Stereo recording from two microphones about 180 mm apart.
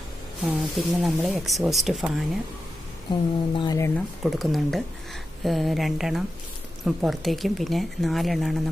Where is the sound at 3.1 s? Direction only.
25° left (ahead or behind).